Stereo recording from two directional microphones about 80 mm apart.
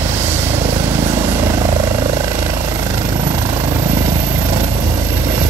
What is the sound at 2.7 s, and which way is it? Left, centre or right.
Vehicle, right.